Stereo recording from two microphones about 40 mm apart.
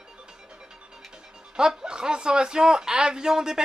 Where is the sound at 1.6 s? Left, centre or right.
Centre.